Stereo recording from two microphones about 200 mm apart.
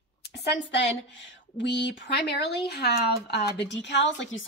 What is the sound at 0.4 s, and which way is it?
A woman's voice, 60° left (ahead or behind).